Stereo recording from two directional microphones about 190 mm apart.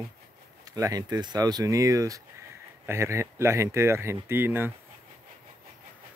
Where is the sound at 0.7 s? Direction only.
20° right (ahead or behind).